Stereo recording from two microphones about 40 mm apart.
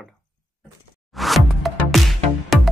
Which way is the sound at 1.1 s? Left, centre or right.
Centre.